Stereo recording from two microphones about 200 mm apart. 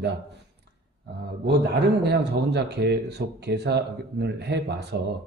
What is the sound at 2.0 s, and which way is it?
A man's voice, 55° right (ahead or behind).